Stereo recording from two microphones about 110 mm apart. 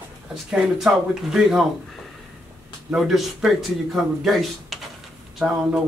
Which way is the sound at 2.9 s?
Centre (ahead or behind).